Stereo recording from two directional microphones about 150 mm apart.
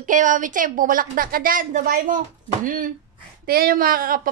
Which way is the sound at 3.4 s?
80° right.